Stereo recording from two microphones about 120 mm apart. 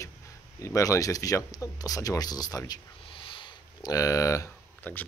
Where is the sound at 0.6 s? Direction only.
25° left (ahead or behind).